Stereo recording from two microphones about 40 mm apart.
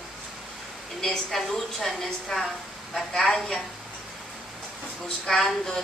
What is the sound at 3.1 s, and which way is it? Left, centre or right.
Speech, centre.